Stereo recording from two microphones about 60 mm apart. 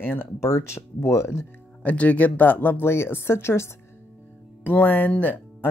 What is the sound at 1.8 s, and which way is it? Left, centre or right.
Speech, left.